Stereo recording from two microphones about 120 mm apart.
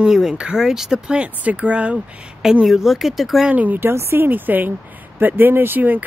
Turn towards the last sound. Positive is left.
turn(degrees=-15)  # may be behind; listen again after turning